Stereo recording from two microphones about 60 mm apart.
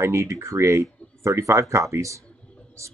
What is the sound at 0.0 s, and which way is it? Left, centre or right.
Speech, right.